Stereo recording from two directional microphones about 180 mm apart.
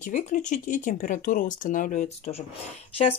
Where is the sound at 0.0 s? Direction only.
40° left (ahead or behind).